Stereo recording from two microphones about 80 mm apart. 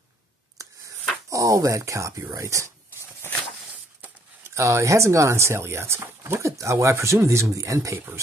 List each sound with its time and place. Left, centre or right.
1.3 s speech: right
4.6 s speech: right